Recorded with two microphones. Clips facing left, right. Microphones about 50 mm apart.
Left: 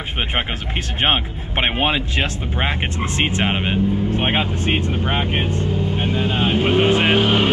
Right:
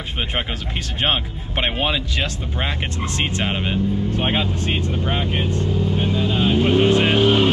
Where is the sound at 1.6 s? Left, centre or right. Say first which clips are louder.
Left 2 dB; left.